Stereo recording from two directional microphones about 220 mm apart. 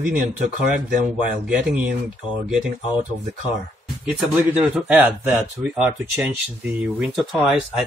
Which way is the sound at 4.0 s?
5° right (ahead or behind).